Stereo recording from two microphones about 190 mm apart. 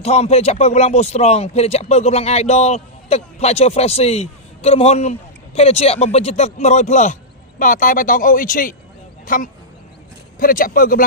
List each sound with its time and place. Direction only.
0.0 s a man's voice: 35° left (ahead or behind)